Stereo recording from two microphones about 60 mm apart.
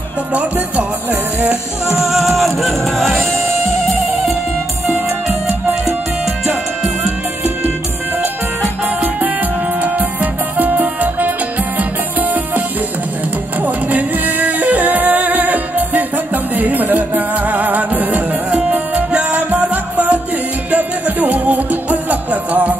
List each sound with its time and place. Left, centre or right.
0.3 s music: right
2.0 s music: centre
10.6 s music: right
13.8 s music: right
18.5 s music: centre